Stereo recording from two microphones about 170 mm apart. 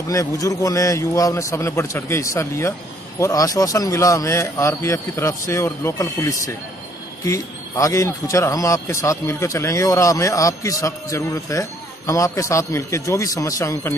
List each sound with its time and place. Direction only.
0.1 s a man's voice: 20° left (ahead or behind)